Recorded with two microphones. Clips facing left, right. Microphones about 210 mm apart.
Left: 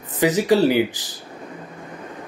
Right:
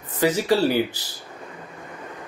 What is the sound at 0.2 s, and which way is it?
Speech, 15° left (ahead or behind).